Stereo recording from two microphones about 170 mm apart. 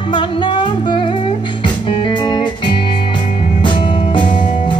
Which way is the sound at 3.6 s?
30° left (ahead or behind).